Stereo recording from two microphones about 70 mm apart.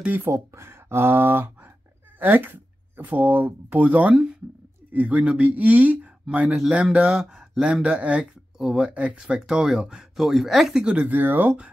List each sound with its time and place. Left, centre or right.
0.0 s speech: right
0.3 s speech: right; by 7.2 s centre
7.2 s speech: centre
7.6 s speech: centre
10.8 s speech: centre